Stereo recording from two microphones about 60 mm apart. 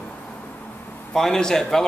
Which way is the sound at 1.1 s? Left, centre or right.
Centre.